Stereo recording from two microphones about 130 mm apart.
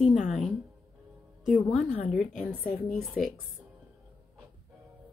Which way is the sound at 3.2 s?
90° left.